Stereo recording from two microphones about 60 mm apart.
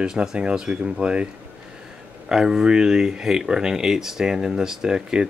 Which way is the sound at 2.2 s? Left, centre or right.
Centre.